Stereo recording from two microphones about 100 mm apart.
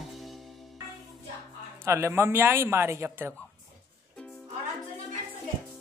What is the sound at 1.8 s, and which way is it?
A man's voice, 25° right (ahead or behind).